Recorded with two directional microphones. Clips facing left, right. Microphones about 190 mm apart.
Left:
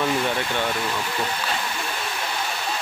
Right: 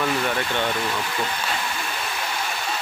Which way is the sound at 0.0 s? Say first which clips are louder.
Left 1 dB; 10° left (ahead or behind).